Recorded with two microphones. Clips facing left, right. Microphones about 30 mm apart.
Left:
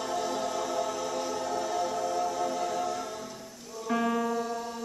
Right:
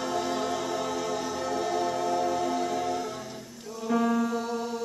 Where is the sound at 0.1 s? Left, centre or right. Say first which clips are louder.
Right 1 dB; right.